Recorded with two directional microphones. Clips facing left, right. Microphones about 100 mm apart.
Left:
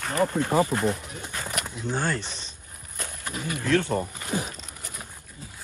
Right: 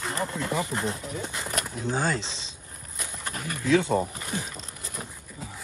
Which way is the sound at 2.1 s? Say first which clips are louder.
Even; 90° right.